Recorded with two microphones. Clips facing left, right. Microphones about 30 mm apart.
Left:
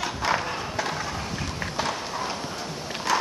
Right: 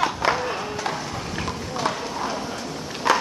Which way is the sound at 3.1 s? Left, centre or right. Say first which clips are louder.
Right 4 dB; right.